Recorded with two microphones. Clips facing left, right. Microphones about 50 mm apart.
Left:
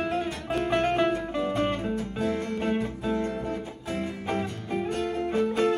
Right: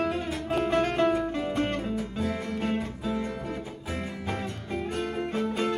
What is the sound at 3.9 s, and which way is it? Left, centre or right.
Music, centre.